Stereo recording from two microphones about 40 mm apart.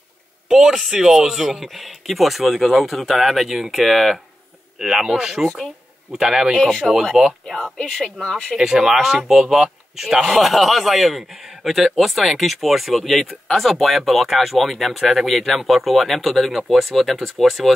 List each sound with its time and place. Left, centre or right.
0.5 s speech: centre
6.5 s speech: centre
7.7 s speech: centre
8.5 s speech: centre